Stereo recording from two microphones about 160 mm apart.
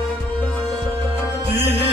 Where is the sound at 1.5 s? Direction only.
15° right (ahead or behind).